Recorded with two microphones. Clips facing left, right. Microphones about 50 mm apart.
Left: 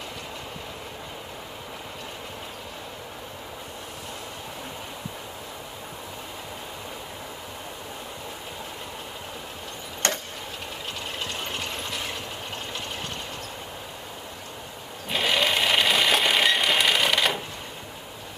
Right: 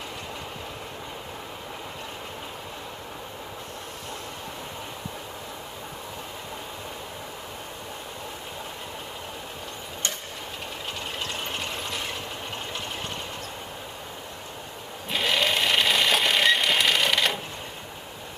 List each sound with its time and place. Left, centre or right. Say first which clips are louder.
10.0 s a sound: left 7 dB; left
11.3 s engine: even; centre
15.0 s sewing machine: left 1 dB; centre